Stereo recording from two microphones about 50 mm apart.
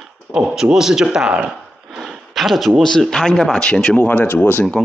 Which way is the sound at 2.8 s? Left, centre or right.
Centre.